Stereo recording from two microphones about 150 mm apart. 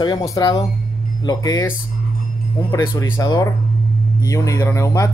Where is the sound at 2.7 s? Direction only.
25° left (ahead or behind).